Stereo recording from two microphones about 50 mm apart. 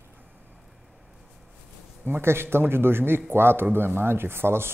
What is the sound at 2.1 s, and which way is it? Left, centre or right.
Speech, right.